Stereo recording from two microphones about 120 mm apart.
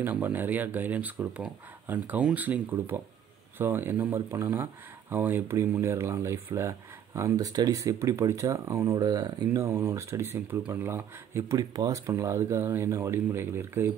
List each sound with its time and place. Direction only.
0.0 s speech: 15° right (ahead or behind)
11.5 s speech: 30° right (ahead or behind)